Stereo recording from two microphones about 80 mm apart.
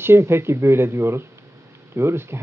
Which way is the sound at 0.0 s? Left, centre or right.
Right.